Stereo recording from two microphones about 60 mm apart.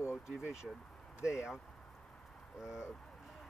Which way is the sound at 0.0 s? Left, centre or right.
Left.